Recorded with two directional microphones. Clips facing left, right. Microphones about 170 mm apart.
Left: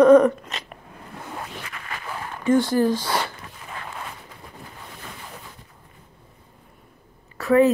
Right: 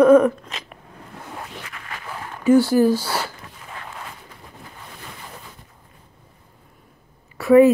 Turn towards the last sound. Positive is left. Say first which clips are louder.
# right 5 dB
turn(degrees=-15)  # may be behind; listen again after turning